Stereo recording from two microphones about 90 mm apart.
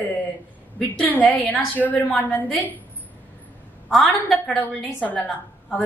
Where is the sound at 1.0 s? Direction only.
15° left (ahead or behind).